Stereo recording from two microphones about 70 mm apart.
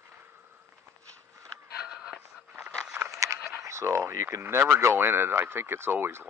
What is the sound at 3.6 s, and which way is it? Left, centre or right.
Speech, right.